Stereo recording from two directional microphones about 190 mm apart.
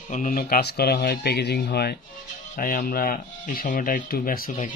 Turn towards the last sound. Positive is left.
turn(degrees=45)  # may be behind; listen again after turning